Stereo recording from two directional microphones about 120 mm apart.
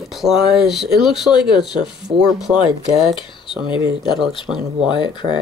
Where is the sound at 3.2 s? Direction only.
45° left (ahead or behind).